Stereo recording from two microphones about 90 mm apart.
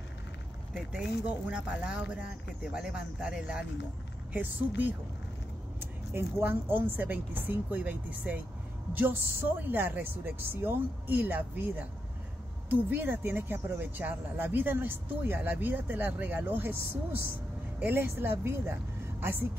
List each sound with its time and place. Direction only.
0.7 s speech: 10° right (ahead or behind)
4.3 s speech: 20° right (ahead or behind)